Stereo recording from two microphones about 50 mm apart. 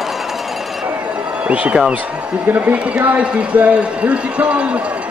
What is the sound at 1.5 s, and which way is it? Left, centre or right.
Speech, right.